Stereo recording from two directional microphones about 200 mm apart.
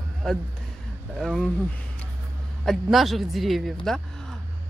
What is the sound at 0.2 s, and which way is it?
Speech, centre (ahead or behind).